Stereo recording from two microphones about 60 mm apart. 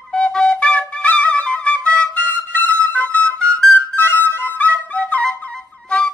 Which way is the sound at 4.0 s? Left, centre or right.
Left.